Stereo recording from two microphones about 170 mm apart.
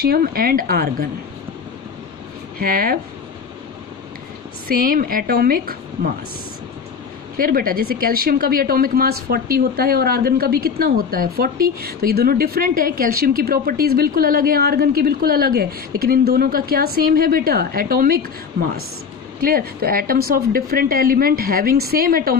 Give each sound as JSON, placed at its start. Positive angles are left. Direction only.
{"t": 0.0, "sound": "speech", "side_deg": -65}
{"t": 2.6, "sound": "speech", "side_deg": -60}
{"t": 4.6, "sound": "speech", "side_deg": -60}
{"t": 7.3, "sound": "speech", "side_deg": -60}